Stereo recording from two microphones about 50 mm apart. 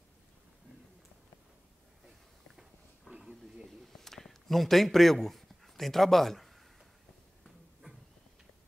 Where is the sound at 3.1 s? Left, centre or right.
Centre.